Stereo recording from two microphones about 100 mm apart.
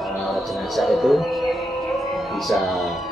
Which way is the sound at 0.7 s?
Centre (ahead or behind).